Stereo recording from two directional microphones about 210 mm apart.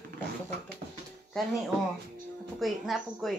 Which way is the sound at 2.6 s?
Centre (ahead or behind).